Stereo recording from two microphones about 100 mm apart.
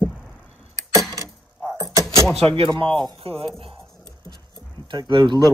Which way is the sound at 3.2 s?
70° right (ahead or behind).